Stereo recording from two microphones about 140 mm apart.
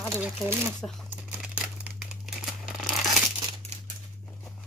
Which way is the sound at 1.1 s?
10° right (ahead or behind).